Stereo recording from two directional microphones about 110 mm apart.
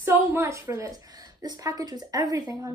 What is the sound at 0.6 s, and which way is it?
A woman's voice, 30° right (ahead or behind).